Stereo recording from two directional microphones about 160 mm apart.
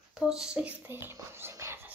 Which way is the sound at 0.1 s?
5° right (ahead or behind).